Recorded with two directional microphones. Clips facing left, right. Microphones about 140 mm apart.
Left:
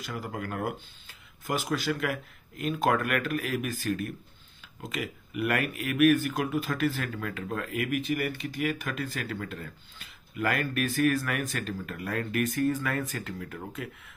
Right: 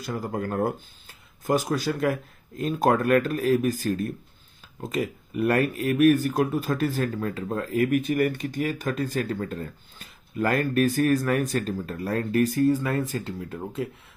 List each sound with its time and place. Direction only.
0.0 s speech: 40° right (ahead or behind)